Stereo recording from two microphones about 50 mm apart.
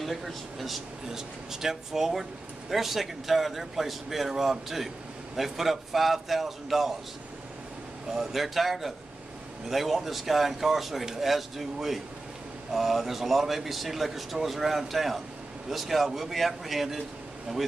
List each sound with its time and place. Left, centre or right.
0.0 s a man's voice: centre
8.1 s a man's voice: centre